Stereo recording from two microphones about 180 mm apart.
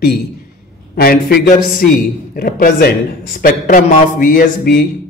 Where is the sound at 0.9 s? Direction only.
55° left (ahead or behind).